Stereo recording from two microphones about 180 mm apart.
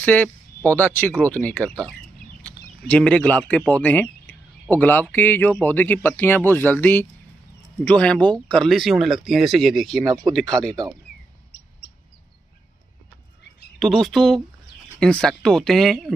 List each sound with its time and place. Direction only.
0.0 s speech: 10° left (ahead or behind)
13.7 s speech: centre (ahead or behind)